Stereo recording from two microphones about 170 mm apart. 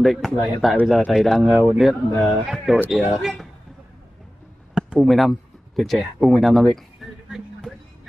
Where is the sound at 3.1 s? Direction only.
Centre (ahead or behind).